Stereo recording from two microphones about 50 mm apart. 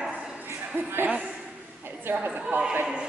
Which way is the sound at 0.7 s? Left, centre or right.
Right.